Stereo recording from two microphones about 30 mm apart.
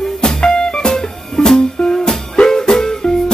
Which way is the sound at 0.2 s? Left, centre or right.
Left.